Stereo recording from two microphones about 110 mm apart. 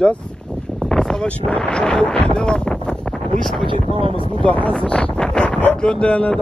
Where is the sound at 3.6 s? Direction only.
55° right (ahead or behind).